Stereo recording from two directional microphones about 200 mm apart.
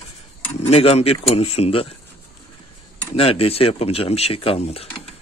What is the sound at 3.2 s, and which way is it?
Speech, 30° left (ahead or behind).